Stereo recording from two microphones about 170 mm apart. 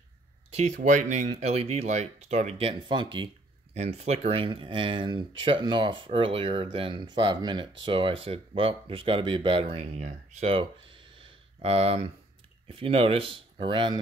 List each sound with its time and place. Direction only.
0.5 s speech: 40° right (ahead or behind)
3.7 s speech: 40° right (ahead or behind)
10.0 s a sound: 40° right (ahead or behind)
12.6 s speech: 35° right (ahead or behind)